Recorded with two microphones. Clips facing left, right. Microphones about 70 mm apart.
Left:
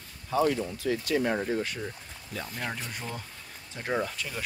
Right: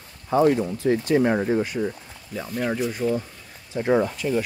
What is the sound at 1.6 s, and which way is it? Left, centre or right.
Speech, centre.